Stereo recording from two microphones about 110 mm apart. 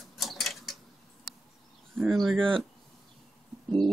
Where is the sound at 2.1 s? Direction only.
Centre (ahead or behind).